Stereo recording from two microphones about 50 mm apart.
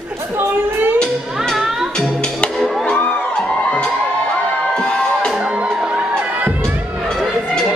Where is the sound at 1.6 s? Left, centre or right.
Centre.